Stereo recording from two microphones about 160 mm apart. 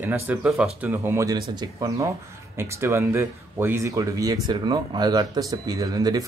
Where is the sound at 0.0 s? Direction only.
10° right (ahead or behind).